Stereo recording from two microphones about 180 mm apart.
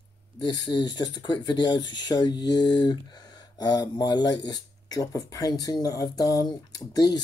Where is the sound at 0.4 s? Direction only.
25° left (ahead or behind).